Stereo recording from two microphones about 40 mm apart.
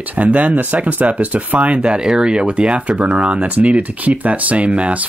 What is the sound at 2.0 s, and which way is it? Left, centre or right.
Speech, centre.